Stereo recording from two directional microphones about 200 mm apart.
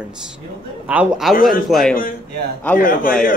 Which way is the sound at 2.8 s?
45° left (ahead or behind).